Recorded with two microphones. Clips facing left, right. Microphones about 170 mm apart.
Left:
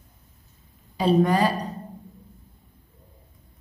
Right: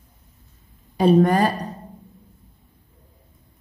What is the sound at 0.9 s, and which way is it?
Speech, 50° right (ahead or behind).